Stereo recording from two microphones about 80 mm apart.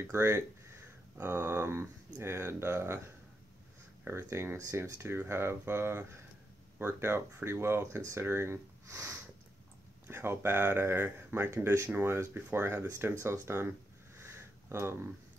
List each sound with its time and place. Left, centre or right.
0.1 s speech: right
4.0 s speech: right
14.2 s a sound: right